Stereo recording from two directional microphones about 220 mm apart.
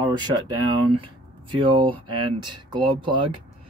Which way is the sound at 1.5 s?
20° right (ahead or behind).